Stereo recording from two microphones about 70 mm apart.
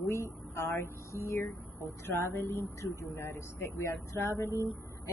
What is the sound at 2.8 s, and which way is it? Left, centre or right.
Speech, left.